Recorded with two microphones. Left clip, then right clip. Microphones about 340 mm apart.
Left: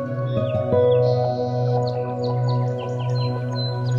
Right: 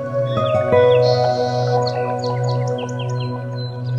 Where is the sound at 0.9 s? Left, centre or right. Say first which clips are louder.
Right 5 dB; right.